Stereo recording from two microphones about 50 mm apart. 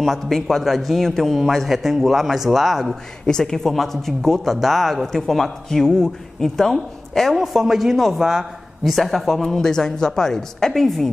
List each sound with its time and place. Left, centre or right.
0.0 s a man's voice: centre
3.3 s speech: centre
7.3 s a man's voice: centre